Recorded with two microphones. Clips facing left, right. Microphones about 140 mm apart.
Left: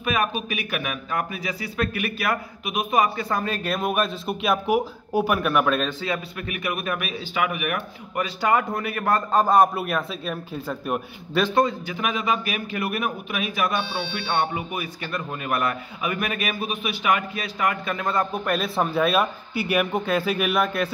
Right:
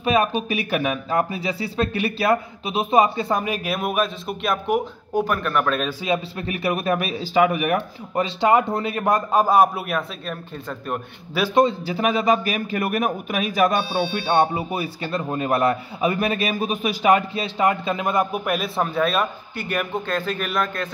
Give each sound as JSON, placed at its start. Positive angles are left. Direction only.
{"t": 0.0, "sound": "speech", "side_deg": -30}
{"t": 6.0, "sound": "speech", "side_deg": -25}
{"t": 11.5, "sound": "a man's voice", "side_deg": -30}